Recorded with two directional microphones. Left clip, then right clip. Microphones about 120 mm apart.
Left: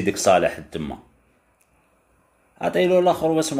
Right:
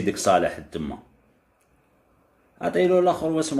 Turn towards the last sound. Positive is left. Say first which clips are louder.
# left 3 dB
turn(degrees=15)  # may be behind; listen again after turning